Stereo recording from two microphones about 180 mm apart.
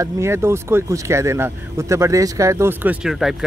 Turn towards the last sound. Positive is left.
turn(degrees=0)  # may be behind; listen again after turning